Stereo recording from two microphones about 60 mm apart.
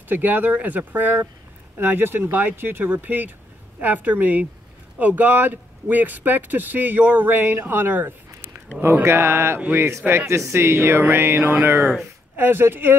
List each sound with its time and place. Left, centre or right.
0.1 s speech: right
8.3 s a sound: right
9.0 s speech: right
11.1 s speech: right